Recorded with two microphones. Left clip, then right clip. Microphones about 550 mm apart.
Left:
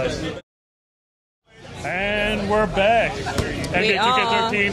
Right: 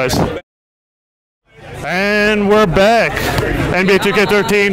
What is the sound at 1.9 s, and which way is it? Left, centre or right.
Speech, right.